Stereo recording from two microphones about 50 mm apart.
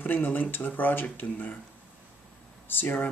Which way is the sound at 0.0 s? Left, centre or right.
Left.